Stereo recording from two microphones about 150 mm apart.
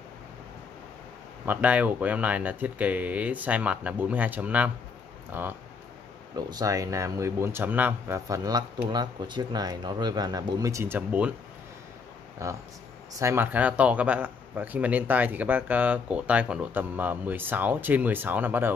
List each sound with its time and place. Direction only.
1.4 s speech: 10° right (ahead or behind)
6.3 s speech: 25° right (ahead or behind)
12.4 s speech: 20° right (ahead or behind)